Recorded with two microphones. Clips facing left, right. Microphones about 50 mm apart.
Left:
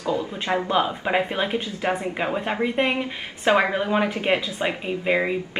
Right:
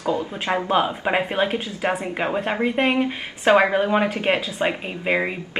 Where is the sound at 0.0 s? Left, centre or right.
Right.